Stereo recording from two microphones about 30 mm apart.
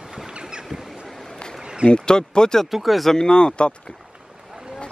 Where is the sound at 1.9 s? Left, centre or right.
Left.